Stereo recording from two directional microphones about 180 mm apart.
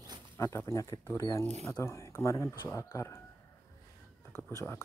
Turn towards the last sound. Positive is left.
turn(degrees=15)  # may be behind; listen again after turning